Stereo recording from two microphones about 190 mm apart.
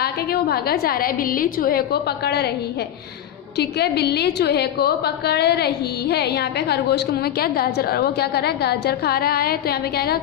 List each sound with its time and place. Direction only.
0.0 s a woman's voice: 55° left (ahead or behind)
3.5 s a woman's voice: 60° left (ahead or behind)